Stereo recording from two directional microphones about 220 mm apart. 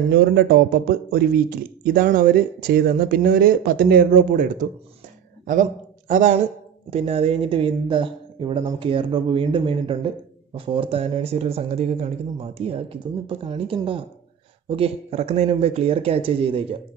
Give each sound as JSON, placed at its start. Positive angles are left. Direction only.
{"t": 0.1, "sound": "speech", "side_deg": -45}